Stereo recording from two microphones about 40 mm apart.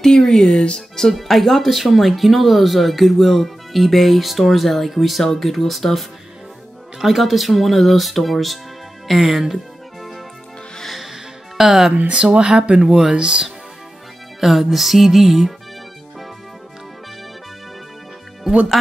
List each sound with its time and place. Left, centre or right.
0.0 s speech: centre
1.0 s speech: centre
11.0 s music: centre
11.9 s speech: right
14.4 s speech: centre